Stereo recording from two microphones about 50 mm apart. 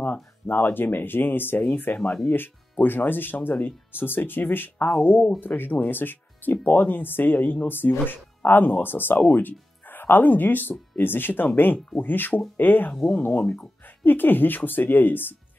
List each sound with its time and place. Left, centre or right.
0.0 s speech: left